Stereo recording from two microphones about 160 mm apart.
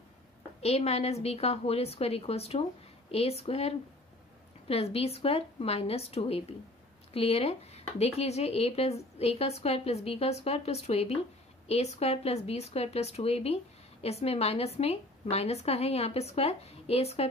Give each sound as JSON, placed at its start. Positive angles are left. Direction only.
{"t": 0.6, "sound": "speech", "side_deg": 40}